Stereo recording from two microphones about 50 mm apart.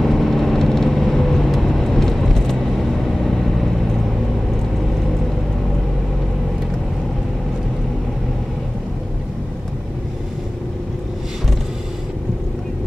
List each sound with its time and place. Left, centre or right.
0.0 s vehicle: centre